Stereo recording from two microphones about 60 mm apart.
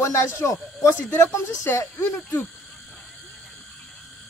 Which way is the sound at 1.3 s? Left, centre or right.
Left.